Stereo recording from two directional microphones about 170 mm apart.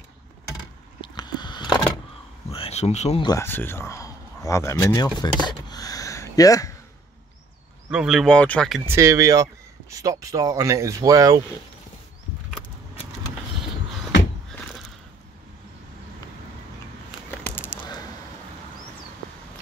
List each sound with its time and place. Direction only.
1.0 s a sound: 25° left (ahead or behind)
2.5 s insect: 35° left (ahead or behind)
3.2 s speech: 25° left (ahead or behind)
3.4 s speech: 15° left (ahead or behind)
7.9 s speech: 5° right (ahead or behind)
8.8 s speech: 15° right (ahead or behind)
17.4 s a sound: 10° left (ahead or behind)